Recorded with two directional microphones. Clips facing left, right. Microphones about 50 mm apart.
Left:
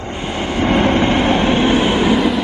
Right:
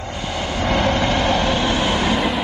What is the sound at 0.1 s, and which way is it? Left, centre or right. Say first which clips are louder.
Train: left 4 dB; left.